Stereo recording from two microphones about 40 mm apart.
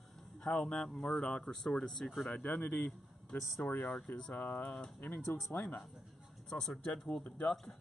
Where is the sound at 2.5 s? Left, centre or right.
Left.